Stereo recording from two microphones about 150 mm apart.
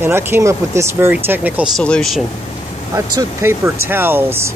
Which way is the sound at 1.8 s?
5° left (ahead or behind).